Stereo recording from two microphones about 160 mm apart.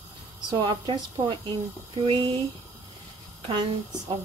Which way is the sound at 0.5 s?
30° right (ahead or behind).